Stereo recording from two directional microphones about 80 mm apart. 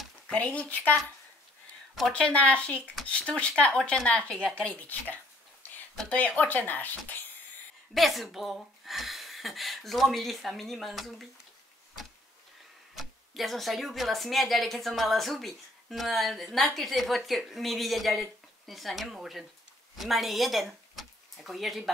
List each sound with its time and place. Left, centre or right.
0.3 s speech: centre
2.1 s speech: centre
6.0 s speech: centre
7.9 s speech: centre
12.9 s speech: centre